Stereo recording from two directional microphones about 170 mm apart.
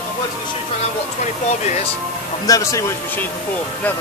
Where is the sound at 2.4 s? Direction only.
20° left (ahead or behind).